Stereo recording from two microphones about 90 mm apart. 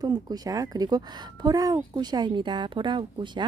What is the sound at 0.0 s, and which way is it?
Speech, 45° right (ahead or behind).